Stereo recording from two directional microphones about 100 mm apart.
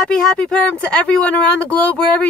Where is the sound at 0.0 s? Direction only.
10° left (ahead or behind).